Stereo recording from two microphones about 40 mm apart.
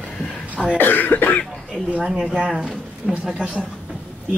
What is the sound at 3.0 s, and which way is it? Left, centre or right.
Speech, centre.